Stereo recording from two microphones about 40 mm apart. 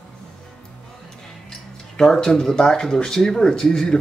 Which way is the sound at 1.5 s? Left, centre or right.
Centre.